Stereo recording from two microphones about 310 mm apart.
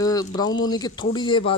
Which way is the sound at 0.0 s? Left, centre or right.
Centre.